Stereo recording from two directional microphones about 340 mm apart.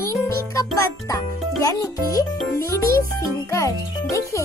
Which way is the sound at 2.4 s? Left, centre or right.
Centre.